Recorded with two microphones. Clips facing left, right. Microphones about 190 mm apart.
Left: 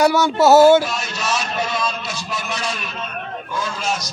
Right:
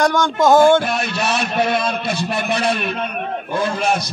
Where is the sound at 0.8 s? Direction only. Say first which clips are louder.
Right 4 dB; 60° right (ahead or behind).